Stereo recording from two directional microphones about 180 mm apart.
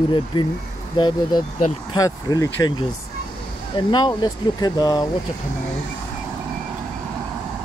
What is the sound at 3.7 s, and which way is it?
Speech, 25° left (ahead or behind).